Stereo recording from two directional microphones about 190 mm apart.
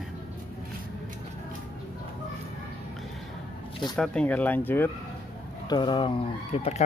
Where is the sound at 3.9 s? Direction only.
5° left (ahead or behind).